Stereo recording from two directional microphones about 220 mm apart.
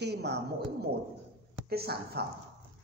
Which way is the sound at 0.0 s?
50° right (ahead or behind).